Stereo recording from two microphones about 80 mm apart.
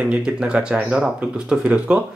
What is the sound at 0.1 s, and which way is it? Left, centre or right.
Speech, centre.